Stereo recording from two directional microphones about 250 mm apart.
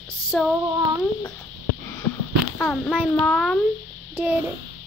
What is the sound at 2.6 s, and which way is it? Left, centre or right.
A child's voice, centre.